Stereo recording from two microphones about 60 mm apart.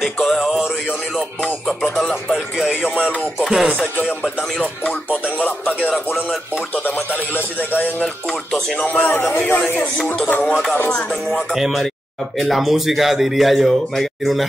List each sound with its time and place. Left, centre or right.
0.0 s music: centre
1.7 s speech: centre
2.3 s music: centre
3.7 s speech: left
7.3 s music: left
8.3 s music: centre
10.2 s music: left
11.5 s speech: centre